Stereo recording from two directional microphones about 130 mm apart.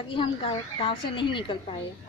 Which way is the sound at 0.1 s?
45° left (ahead or behind).